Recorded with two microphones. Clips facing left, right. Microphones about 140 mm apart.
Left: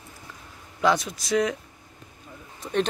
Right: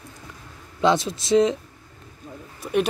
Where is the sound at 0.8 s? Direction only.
25° right (ahead or behind).